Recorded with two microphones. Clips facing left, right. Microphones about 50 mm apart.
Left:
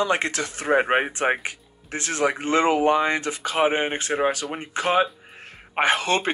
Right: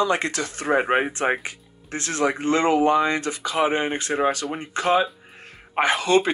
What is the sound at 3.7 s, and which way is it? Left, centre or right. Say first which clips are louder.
Speech: even; left.